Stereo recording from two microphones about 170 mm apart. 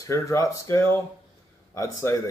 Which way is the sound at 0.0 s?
20° left (ahead or behind).